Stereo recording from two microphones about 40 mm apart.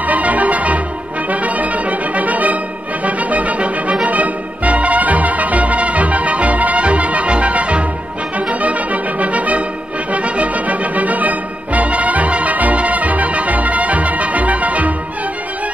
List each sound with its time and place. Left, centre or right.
0.0 s music: right